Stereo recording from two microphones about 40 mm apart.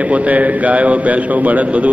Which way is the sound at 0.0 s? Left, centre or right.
Right.